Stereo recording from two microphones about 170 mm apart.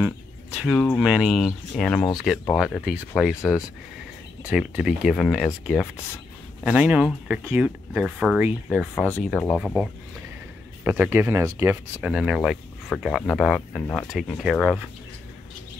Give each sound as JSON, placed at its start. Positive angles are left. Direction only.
{"t": 0.7, "sound": "speech", "side_deg": 10}
{"t": 1.0, "sound": "speech", "side_deg": -5}
{"t": 6.6, "sound": "a man's voice", "side_deg": -5}